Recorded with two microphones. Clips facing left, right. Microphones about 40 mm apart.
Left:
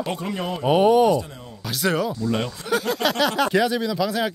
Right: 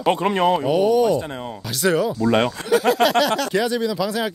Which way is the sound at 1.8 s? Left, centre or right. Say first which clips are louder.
Right 3 dB; centre.